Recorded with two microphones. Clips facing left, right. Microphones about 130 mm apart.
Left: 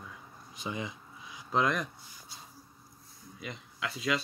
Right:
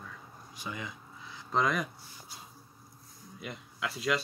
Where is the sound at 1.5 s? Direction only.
Centre (ahead or behind).